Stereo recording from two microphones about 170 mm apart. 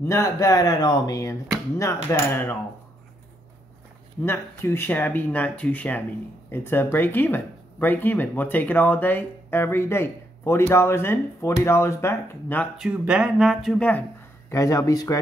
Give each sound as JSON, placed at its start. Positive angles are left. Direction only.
{"t": 0.0, "sound": "speech", "side_deg": 15}
{"t": 4.2, "sound": "speech", "side_deg": 15}
{"t": 12.7, "sound": "speech", "side_deg": -5}
{"t": 14.5, "sound": "speech", "side_deg": 20}